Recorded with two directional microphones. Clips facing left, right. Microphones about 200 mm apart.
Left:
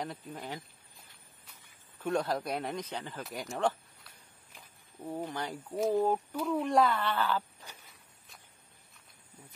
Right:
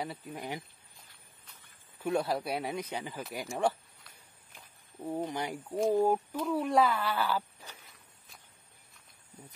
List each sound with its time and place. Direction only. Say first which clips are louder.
0.0 s speech: right 1 dB; 5° right (ahead or behind)
2.0 s speech: right 1 dB; 10° right (ahead or behind)
4.1 s a sound: right 1 dB; centre (ahead or behind)
5.0 s speech: right 3 dB; 10° right (ahead or behind)
6.3 s speech: even; centre (ahead or behind)